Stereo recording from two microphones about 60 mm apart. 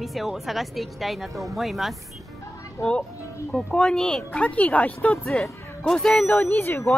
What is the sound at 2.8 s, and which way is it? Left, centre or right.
Speech, left.